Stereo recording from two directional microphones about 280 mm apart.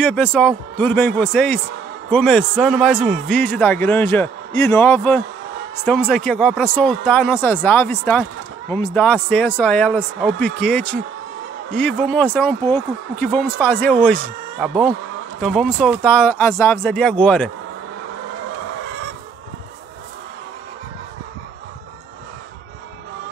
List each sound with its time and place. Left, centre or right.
0.0 s a man's voice: centre